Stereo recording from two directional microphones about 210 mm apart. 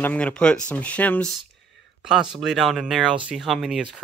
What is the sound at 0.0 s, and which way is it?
Speech, 5° left (ahead or behind).